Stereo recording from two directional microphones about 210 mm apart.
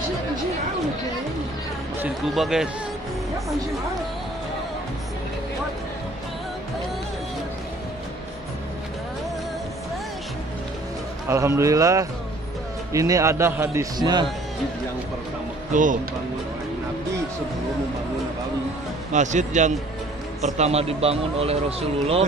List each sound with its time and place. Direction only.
2.0 s speech: 5° right (ahead or behind)
11.2 s a man's voice: 15° right (ahead or behind)
15.7 s a man's voice: 40° right (ahead or behind)
19.1 s a man's voice: 35° right (ahead or behind)